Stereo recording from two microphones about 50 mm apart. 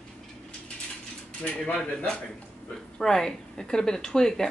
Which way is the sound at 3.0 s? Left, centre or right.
Centre.